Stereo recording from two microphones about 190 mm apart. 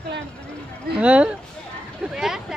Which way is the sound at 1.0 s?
5° right (ahead or behind).